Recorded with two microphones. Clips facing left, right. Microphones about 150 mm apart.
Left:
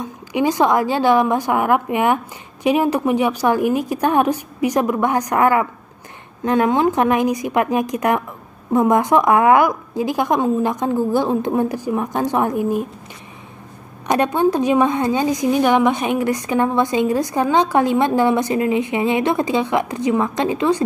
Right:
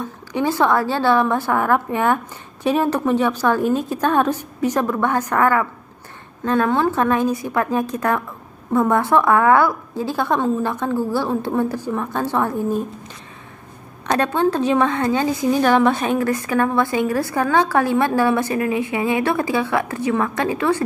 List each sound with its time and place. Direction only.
0.0 s a woman's voice: 15° left (ahead or behind)
14.0 s a woman's voice: 15° left (ahead or behind)